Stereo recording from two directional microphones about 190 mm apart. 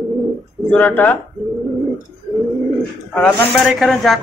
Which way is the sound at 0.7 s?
10° left (ahead or behind).